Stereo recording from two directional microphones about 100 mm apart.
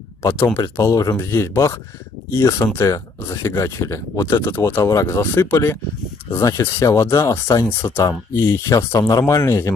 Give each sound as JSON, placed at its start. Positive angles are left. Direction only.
{"t": 0.2, "sound": "speech", "side_deg": 25}